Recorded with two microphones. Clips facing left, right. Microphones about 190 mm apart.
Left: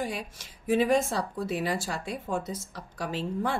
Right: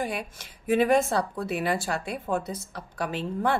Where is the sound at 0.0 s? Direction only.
60° right (ahead or behind).